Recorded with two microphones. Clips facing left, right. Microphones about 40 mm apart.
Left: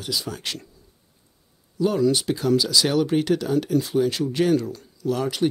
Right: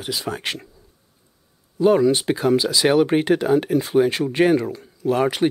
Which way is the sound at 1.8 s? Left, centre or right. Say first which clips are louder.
Right 5 dB; right.